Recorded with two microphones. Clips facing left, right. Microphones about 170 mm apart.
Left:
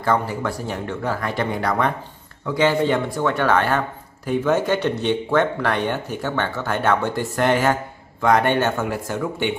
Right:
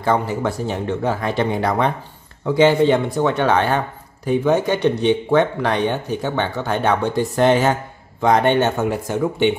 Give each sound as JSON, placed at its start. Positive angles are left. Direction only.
{"t": 0.0, "sound": "speech", "side_deg": -25}